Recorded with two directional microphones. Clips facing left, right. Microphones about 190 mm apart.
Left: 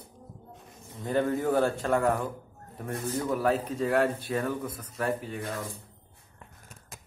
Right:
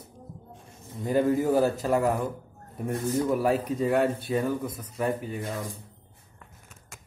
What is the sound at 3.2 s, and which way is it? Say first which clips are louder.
Speech: right 2 dB; 10° right (ahead or behind).